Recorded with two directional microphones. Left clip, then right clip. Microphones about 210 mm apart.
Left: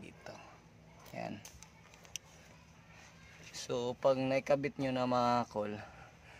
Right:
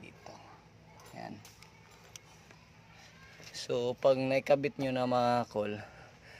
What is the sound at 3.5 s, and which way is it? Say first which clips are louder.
Speech: right 4 dB; 10° right (ahead or behind).